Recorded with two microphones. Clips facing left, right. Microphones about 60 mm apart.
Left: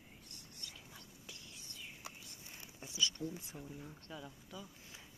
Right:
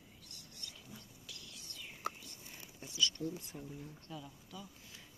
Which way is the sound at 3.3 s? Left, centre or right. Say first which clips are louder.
Right 2 dB; centre.